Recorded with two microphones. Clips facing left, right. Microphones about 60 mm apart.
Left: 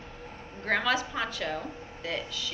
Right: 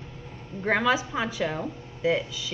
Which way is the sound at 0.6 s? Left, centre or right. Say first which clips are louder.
Right 4 dB; centre.